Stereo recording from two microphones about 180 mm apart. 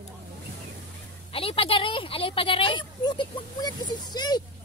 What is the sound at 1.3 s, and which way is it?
Speech, 30° left (ahead or behind).